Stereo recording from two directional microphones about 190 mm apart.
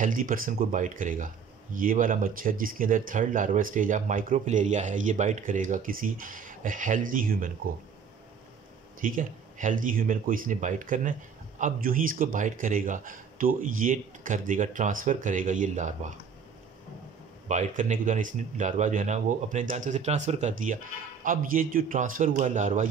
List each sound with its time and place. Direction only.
0.0 s speech: 45° right (ahead or behind)
9.0 s speech: 45° right (ahead or behind)
17.5 s speech: 40° right (ahead or behind)